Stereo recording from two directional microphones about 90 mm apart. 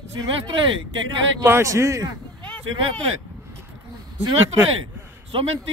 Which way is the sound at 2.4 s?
15° left (ahead or behind).